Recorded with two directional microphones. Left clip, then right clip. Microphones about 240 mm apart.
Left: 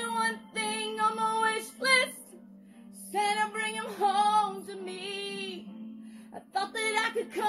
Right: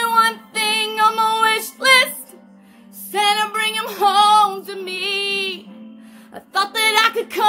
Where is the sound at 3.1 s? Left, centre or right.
Centre.